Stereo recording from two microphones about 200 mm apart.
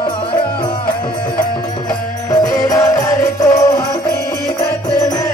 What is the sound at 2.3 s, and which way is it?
Music, 20° left (ahead or behind).